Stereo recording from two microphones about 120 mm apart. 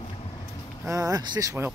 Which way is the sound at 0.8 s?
30° right (ahead or behind).